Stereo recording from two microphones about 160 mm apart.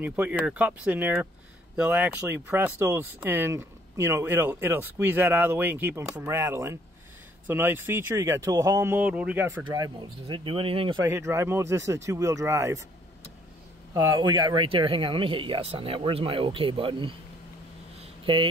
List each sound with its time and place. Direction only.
0.0 s speech: 10° right (ahead or behind)
8.9 s speech: 10° right (ahead or behind)
9.7 s speech: 30° right (ahead or behind)
11.1 s speech: 15° right (ahead or behind)
13.9 s speech: 25° right (ahead or behind)
17.9 s a sound: 35° right (ahead or behind)